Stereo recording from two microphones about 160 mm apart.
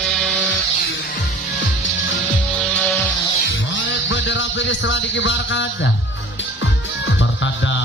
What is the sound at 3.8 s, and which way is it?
Music, 90° left.